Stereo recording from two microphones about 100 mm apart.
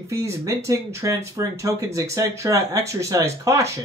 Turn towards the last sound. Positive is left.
turn(degrees=-30)  # may be behind; listen again after turning